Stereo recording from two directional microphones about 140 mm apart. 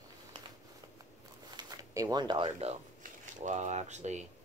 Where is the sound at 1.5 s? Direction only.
25° right (ahead or behind).